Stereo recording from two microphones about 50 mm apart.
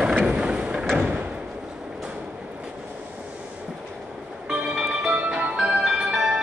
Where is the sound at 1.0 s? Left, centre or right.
Right.